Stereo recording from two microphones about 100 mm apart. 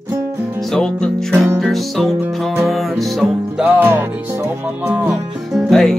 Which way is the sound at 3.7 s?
15° right (ahead or behind).